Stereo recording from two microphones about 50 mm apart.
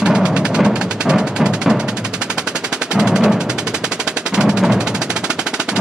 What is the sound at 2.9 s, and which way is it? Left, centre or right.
Music, centre.